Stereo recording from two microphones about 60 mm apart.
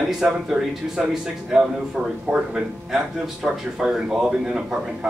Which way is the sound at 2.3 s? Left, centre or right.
Centre.